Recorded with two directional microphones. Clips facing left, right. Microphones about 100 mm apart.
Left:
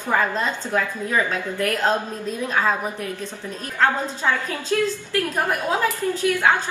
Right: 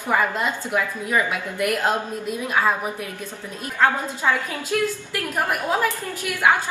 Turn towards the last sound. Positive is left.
turn(degrees=-15)  # may be behind; listen again after turning